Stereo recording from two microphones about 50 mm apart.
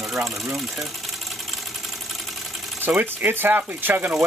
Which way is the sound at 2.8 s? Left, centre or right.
Right.